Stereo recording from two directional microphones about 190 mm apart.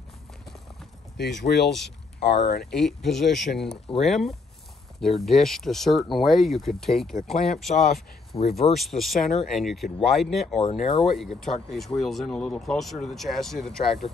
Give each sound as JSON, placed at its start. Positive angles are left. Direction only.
{"t": 1.1, "sound": "speech", "side_deg": 60}
{"t": 2.7, "sound": "speech", "side_deg": 0}
{"t": 10.6, "sound": "speech", "side_deg": 30}
{"t": 11.1, "sound": "speech", "side_deg": 0}